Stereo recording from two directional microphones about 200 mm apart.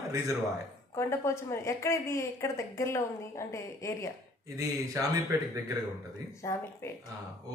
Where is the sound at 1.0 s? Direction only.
15° left (ahead or behind).